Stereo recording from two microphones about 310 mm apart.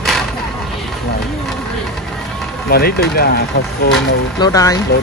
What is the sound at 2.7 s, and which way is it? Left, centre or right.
Speech, left.